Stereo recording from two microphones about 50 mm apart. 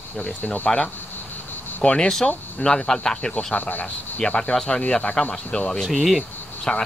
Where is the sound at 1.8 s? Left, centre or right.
Centre.